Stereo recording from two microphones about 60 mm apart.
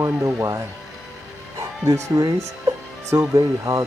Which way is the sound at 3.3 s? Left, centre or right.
Right.